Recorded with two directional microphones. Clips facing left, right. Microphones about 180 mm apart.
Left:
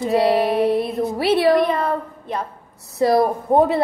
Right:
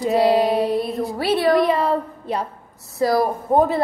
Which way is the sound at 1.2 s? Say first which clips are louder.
Left 2 dB; 25° left (ahead or behind).